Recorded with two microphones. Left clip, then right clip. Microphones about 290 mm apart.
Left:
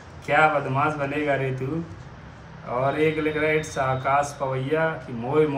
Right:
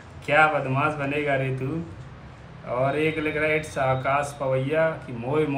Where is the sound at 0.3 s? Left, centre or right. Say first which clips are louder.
Even; centre.